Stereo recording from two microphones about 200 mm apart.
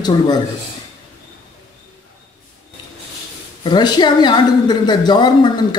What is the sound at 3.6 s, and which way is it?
A man's voice, 20° left (ahead or behind).